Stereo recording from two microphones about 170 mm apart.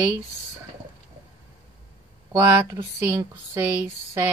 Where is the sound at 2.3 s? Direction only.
20° right (ahead or behind).